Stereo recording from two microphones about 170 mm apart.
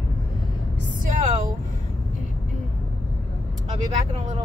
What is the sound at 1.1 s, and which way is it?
Speech, 50° right (ahead or behind).